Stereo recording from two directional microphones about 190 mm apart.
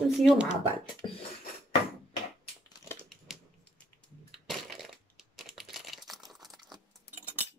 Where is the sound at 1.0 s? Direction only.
25° left (ahead or behind).